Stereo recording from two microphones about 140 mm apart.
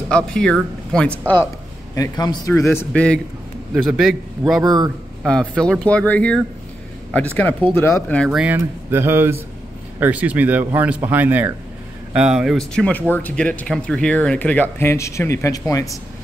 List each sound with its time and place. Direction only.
0.1 s speech: 5° left (ahead or behind)
2.0 s a man's voice: 25° left (ahead or behind)
2.9 s speech: 5° left (ahead or behind)
3.7 s a man's voice: 5° right (ahead or behind)
4.6 s a man's voice: 25° right (ahead or behind)
5.2 s speech: 5° left (ahead or behind)
8.2 s a man's voice: 5° right (ahead or behind)
8.5 s a man's voice: 15° right (ahead or behind); by 16.0 s 25° left (ahead or behind)